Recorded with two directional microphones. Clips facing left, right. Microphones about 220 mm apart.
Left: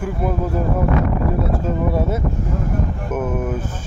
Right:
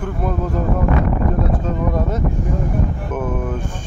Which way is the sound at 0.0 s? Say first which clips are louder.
Left 1 dB; 5° left (ahead or behind).